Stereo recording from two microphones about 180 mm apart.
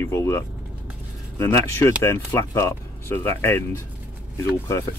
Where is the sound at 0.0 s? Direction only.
15° left (ahead or behind).